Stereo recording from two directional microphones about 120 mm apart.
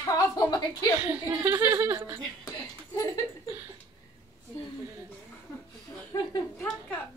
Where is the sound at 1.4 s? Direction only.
20° right (ahead or behind).